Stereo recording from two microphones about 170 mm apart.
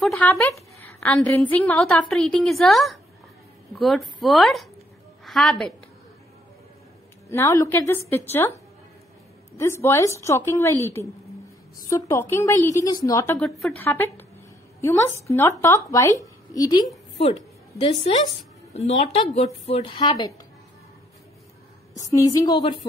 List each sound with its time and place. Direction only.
0.5 s a sound: 10° left (ahead or behind)
1.2 s a woman's voice: 10° left (ahead or behind)
7.2 s a woman's voice: 15° left (ahead or behind)
9.6 s a woman's voice: 15° left (ahead or behind)
17.2 s a sound: 40° left (ahead or behind)
18.7 s a woman's voice: 40° left (ahead or behind); by 20.3 s 25° left (ahead or behind)
21.9 s a woman's voice: 20° left (ahead or behind)